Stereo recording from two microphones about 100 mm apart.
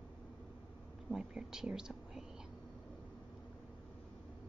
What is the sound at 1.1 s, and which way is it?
Speech, 5° right (ahead or behind).